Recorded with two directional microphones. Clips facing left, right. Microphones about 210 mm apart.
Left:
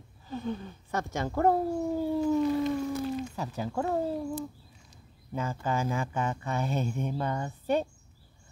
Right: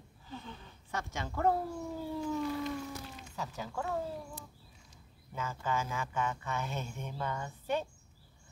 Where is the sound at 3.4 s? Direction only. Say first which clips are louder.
Left 7 dB; 35° left (ahead or behind).